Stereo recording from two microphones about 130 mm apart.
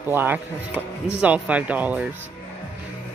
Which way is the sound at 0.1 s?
15° right (ahead or behind).